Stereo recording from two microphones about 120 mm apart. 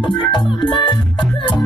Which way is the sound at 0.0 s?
40° left (ahead or behind).